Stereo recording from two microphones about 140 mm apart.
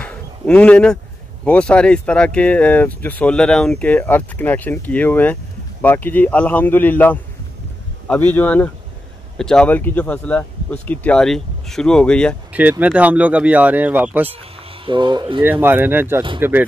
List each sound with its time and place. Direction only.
0.0 s a sound: 10° left (ahead or behind)
1.4 s speech: 10° left (ahead or behind)
12.5 s speech: 10° right (ahead or behind)
14.9 s speech: 35° right (ahead or behind)
15.4 s speech: 15° right (ahead or behind)